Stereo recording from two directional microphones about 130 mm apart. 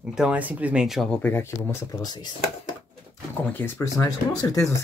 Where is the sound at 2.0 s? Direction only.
30° left (ahead or behind).